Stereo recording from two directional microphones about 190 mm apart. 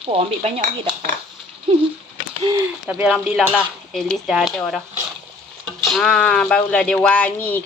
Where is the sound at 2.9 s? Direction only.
5° right (ahead or behind).